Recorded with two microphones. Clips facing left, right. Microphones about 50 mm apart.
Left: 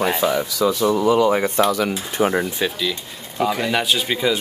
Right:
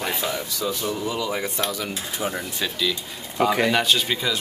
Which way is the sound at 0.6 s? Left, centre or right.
Left.